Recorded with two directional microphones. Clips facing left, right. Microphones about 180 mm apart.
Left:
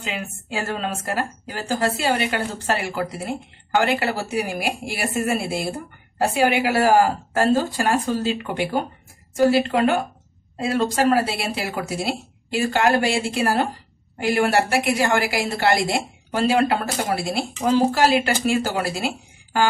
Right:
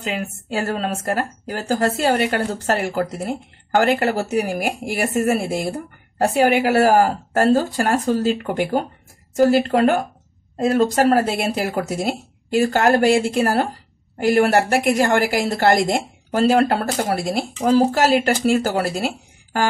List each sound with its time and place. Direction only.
0.0 s a woman's voice: 40° right (ahead or behind)